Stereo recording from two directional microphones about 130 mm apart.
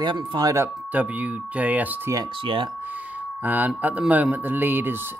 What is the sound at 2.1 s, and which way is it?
Speech, 40° right (ahead or behind).